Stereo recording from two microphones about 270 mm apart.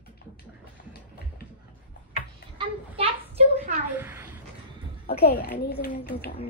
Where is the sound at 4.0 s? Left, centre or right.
Centre.